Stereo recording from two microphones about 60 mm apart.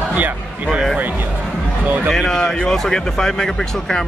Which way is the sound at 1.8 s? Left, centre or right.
Right.